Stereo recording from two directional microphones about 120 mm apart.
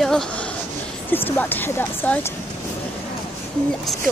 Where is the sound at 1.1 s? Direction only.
15° left (ahead or behind).